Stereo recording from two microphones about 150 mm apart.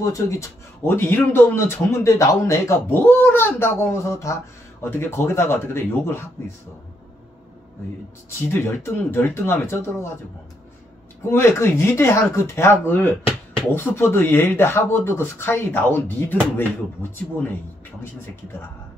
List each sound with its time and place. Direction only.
0.0 s speech: 20° left (ahead or behind)
8.3 s speech: 15° left (ahead or behind)
11.2 s speech: 20° left (ahead or behind)